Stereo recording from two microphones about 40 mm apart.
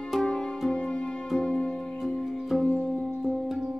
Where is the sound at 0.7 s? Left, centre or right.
Left.